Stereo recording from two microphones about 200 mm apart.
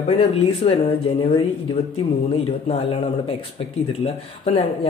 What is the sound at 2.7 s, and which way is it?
Speech, 25° left (ahead or behind).